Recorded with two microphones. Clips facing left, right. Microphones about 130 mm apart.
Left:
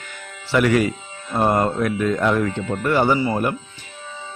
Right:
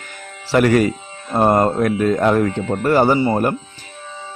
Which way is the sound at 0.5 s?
45° right (ahead or behind).